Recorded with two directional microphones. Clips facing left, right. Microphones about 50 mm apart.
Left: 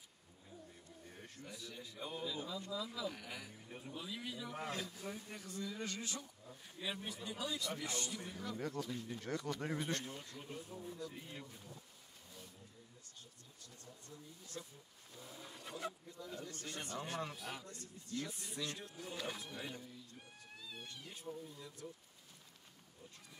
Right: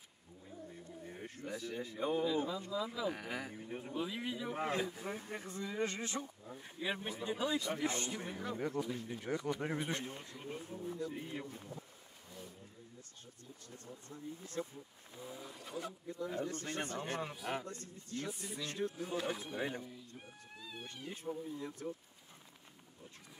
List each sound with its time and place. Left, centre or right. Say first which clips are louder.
1.0 s speech: right 7 dB; right
3.2 s speech: right 7 dB; right
3.6 s speech: right 7 dB; right
13.7 s speech: right 5 dB; right
15.1 s speech: right 6 dB; centre
16.1 s speech: right 9 dB; right
17.2 s speech: right 2 dB; centre
17.5 s speech: right 8 dB; right
18.3 s speech: right 2 dB; centre
18.7 s speech: right 9 dB; right
19.0 s speech: right 6 dB; right
20.2 s a sound: right 3 dB; centre
21.1 s speech: right 8 dB; right